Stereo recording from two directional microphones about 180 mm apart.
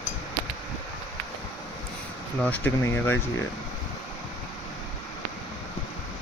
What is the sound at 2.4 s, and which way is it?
Cutlery, 10° left (ahead or behind).